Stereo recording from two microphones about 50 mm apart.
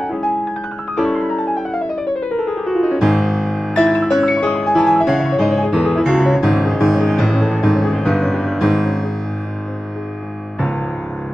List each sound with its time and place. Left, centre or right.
0.9 s music: centre
1.8 s music: left
2.3 s piano: centre
3.8 s music: centre